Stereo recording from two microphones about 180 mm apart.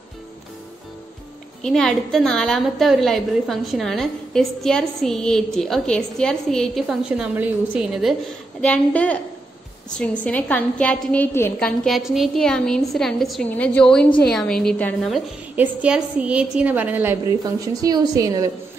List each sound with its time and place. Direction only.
1.6 s a woman's voice: centre (ahead or behind)
11.8 s a woman's voice: centre (ahead or behind)
17.4 s speech: 20° right (ahead or behind)